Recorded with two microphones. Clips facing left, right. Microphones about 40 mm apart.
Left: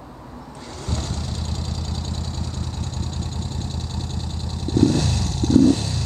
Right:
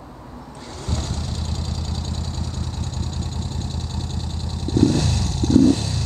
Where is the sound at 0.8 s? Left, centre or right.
Centre.